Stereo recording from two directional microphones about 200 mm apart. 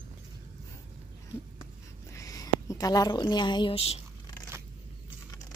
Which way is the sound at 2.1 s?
15° left (ahead or behind).